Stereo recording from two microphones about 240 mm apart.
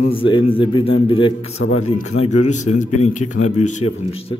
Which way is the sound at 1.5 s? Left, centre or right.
Left.